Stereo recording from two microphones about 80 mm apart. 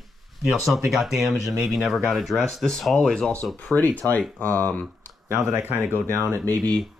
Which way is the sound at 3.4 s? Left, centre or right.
Centre.